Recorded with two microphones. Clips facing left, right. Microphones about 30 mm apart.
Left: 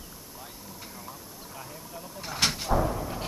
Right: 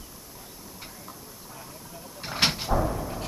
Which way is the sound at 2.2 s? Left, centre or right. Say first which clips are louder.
Right 2 dB; right.